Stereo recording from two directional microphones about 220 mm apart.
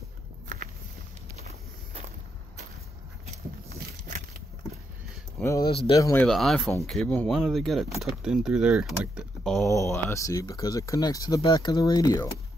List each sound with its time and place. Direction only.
5.4 s speech: 15° left (ahead or behind)
6.2 s speech: centre (ahead or behind)
9.7 s speech: 15° left (ahead or behind)